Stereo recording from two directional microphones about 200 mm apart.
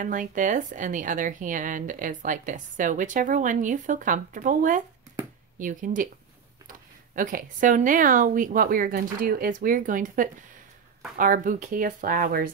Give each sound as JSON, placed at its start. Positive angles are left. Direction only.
{"t": 0.0, "sound": "a woman's voice", "side_deg": -40}
{"t": 7.2, "sound": "speech", "side_deg": -45}